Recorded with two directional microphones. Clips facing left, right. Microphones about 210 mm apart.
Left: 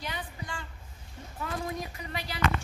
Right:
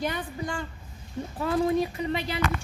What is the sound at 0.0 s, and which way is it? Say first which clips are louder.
Speech: right 9 dB; 45° right (ahead or behind).